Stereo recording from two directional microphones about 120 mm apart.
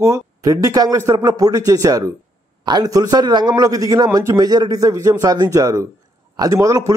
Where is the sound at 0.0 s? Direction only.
30° right (ahead or behind).